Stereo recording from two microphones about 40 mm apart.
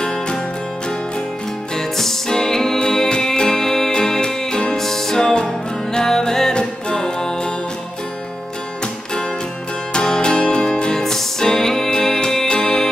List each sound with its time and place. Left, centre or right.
1.8 s music: centre
9.9 s music: centre